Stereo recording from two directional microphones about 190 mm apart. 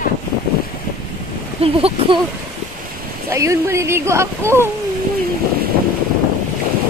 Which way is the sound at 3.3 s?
15° right (ahead or behind).